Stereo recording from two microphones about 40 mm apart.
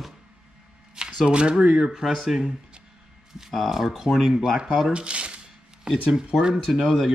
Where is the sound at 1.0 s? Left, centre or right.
Centre.